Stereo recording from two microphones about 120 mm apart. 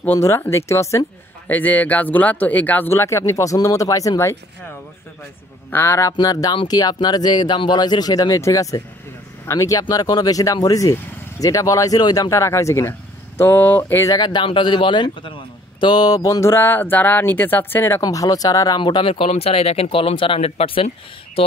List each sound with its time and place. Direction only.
0.0 s speech: 20° left (ahead or behind)
1.5 s speech: 15° left (ahead or behind)
5.7 s speech: 20° left (ahead or behind)
6.1 s speech: 35° left (ahead or behind); by 14.0 s 15° left (ahead or behind)
14.0 s speech: 35° left (ahead or behind); by 18.0 s 20° left (ahead or behind)
18.0 s speech: 30° left (ahead or behind); by 21.5 s 50° left (ahead or behind)